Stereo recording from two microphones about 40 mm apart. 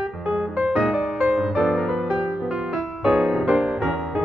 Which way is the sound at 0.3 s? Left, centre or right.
Centre.